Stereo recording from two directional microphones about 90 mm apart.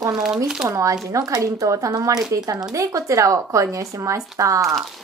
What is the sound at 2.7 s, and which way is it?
A woman's voice, 35° right (ahead or behind).